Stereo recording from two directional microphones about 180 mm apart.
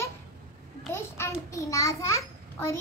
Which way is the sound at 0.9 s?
15° left (ahead or behind).